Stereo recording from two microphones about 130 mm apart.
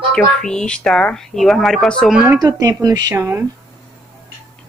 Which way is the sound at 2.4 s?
30° right (ahead or behind).